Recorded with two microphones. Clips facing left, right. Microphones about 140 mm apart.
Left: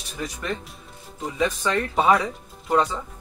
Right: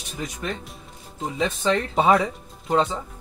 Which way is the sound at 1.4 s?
25° right (ahead or behind).